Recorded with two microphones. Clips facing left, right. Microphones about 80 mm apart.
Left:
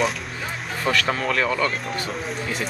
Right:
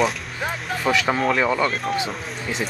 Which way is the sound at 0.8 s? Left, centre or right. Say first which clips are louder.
Right 3 dB; centre.